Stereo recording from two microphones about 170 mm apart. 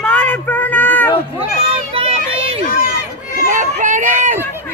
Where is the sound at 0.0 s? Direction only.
10° left (ahead or behind).